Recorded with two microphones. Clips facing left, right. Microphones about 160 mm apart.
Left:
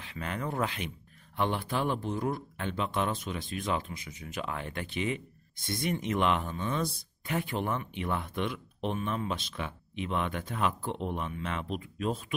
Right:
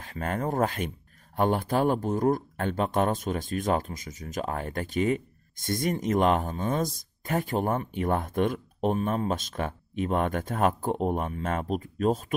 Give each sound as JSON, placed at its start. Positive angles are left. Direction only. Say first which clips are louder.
{"t": 0.0, "sound": "speech", "louder": "right 6 dB", "side_deg": -45}